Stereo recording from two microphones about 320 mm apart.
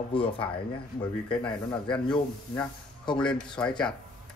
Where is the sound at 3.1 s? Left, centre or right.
Centre.